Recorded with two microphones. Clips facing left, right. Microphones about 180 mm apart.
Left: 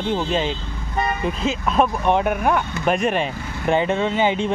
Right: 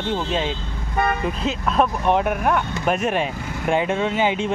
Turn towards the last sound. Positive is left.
turn(degrees=-5)  # may be behind; listen again after turning